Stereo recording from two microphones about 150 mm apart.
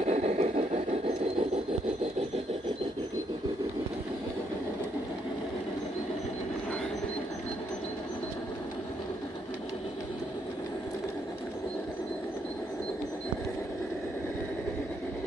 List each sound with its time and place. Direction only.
0.0 s vehicle: 45° right (ahead or behind)